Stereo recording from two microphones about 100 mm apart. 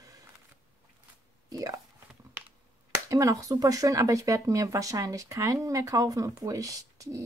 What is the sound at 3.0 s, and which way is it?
Speech, 30° right (ahead or behind).